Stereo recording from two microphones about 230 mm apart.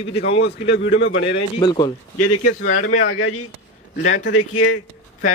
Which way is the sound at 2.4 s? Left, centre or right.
Left.